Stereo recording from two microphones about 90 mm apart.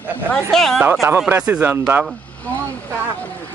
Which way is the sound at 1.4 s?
15° right (ahead or behind).